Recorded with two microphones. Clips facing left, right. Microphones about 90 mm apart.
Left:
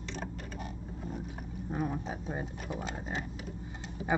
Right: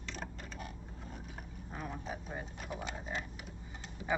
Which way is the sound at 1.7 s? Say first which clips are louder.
Left 8 dB; 20° left (ahead or behind).